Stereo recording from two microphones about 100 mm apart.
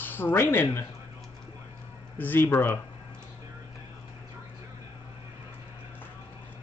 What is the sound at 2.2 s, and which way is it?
Speech, 20° left (ahead or behind).